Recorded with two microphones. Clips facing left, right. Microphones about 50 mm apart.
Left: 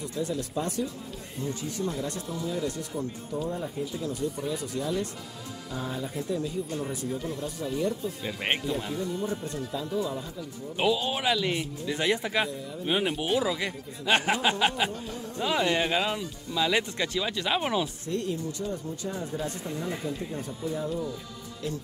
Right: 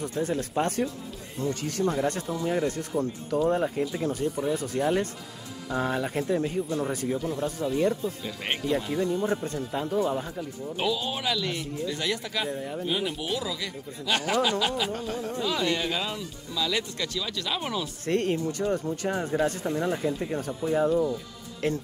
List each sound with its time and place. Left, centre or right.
0.0 s speech: right
1.5 s speech: right
3.3 s speech: right
6.2 s speech: right
10.8 s speech: centre
12.4 s speech: right
12.8 s speech: left
14.9 s speech: right
15.3 s speech: left
18.0 s speech: right
19.6 s speech: right